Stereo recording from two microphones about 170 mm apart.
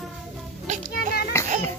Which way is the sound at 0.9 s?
65° left (ahead or behind).